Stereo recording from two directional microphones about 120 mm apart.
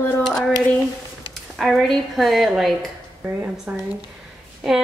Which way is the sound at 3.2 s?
10° right (ahead or behind).